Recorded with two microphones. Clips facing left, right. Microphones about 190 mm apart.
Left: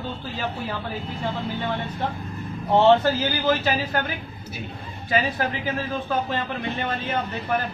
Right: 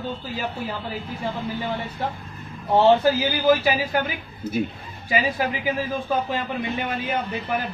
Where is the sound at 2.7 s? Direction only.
10° right (ahead or behind).